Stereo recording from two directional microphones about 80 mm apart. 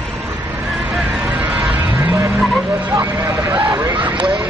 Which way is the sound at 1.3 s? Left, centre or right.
Centre.